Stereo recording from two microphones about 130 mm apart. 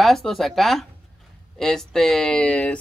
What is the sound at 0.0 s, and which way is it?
Speech, centre (ahead or behind).